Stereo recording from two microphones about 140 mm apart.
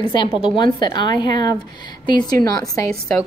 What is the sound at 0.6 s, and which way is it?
Speech, 35° left (ahead or behind).